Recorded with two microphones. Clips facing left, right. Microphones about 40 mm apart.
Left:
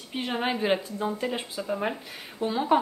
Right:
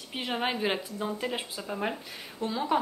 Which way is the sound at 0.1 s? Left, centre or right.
Centre.